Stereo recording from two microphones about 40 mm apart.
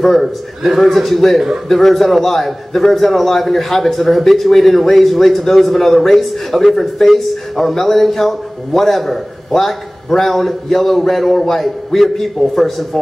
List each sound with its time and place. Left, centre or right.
0.0 s a man's voice: centre